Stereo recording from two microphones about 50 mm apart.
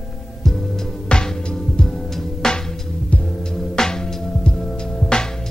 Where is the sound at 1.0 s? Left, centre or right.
Centre.